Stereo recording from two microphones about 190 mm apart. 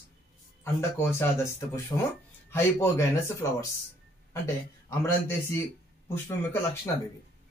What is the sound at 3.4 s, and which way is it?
Speech, 15° left (ahead or behind).